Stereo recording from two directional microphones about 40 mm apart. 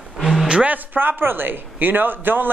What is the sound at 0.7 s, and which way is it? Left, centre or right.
A man's voice, right.